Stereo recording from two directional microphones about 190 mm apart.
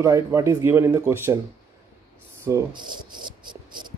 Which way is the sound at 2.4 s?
15° right (ahead or behind).